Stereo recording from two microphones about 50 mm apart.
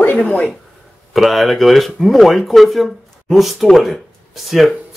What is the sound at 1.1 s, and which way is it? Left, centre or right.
Speech, centre.